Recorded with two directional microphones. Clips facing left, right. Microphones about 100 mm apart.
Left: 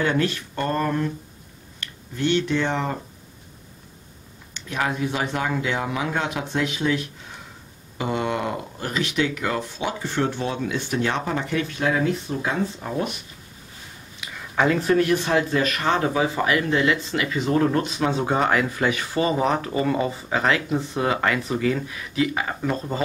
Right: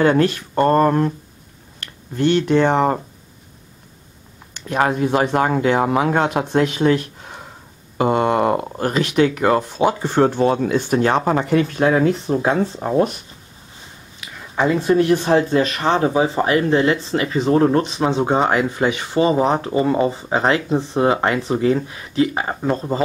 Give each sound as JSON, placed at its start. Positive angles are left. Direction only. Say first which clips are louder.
{"t": 0.0, "sound": "speech", "louder": "right 7 dB", "side_deg": -45}
{"t": 4.6, "sound": "speech", "louder": "right 7 dB", "side_deg": -45}
{"t": 14.5, "sound": "a sound", "louder": "right 2 dB", "side_deg": -10}
{"t": 14.9, "sound": "speech", "louder": "right 5 dB", "side_deg": -30}